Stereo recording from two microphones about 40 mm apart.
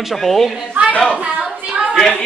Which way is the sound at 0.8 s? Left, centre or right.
Right.